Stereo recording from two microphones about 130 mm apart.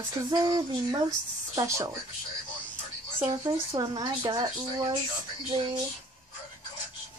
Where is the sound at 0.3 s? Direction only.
30° right (ahead or behind).